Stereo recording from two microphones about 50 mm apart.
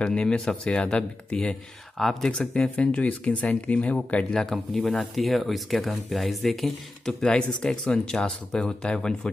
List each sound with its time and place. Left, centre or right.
0.0 s speech: centre
2.0 s speech: centre
2.3 s speech: left
4.3 s speech: centre